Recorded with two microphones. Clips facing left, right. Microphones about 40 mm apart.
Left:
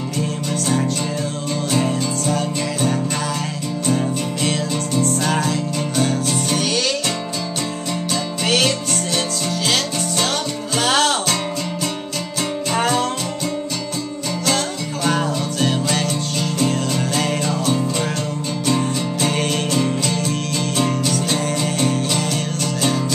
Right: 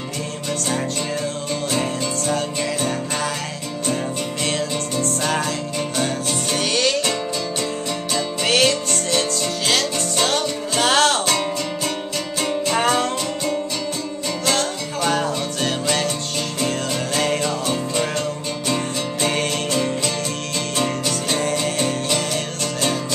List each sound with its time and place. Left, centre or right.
1.7 s music: centre
4.5 s music: centre
8.5 s music: centre
12.7 s music: centre
15.0 s music: centre
19.2 s music: centre